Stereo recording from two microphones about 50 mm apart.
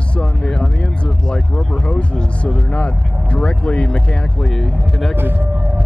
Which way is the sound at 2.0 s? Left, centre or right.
Left.